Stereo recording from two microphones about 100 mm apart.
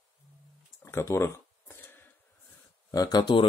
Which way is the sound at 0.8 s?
30° left (ahead or behind).